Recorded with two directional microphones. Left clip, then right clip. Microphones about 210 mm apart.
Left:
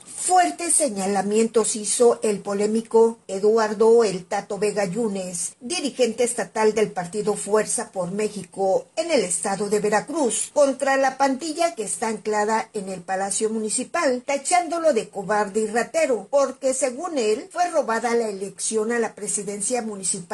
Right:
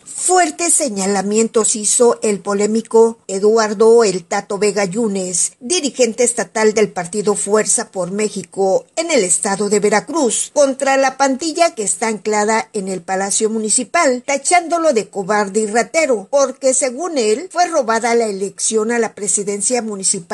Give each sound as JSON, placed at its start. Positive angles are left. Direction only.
{"t": 0.3, "sound": "a woman's voice", "side_deg": -30}